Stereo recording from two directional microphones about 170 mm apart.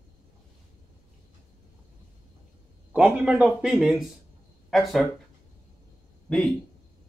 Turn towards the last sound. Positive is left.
turn(degrees=5)  # may be behind; listen again after turning